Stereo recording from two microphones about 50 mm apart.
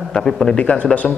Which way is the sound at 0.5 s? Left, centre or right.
Left.